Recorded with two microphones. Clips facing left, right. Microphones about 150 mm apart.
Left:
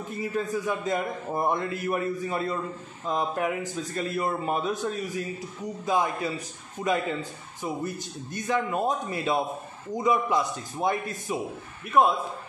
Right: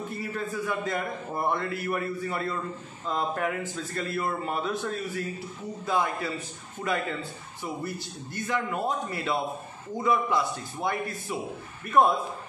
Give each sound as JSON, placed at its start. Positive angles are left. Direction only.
{"t": 0.2, "sound": "a man's voice", "side_deg": 15}
{"t": 12.0, "sound": "a man's voice", "side_deg": 10}